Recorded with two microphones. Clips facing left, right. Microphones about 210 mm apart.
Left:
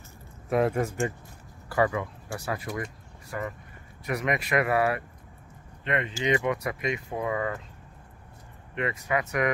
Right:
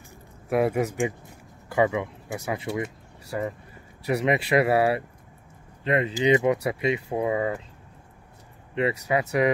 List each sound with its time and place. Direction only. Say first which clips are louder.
0.5 s speech: right 2 dB; 5° right (ahead or behind); by 7.6 s 20° right (ahead or behind)
8.7 s speech: right 4 dB; 30° right (ahead or behind)